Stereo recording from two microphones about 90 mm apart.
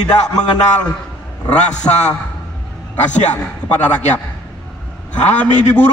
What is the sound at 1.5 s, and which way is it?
Speech, 10° left (ahead or behind).